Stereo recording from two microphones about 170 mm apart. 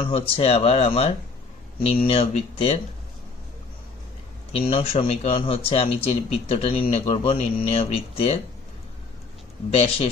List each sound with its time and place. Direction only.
0.0 s a man's voice: 35° left (ahead or behind)
4.5 s a man's voice: 35° left (ahead or behind)
9.7 s a man's voice: 35° left (ahead or behind)